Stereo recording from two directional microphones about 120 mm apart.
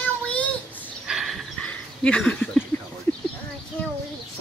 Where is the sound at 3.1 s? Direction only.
15° left (ahead or behind).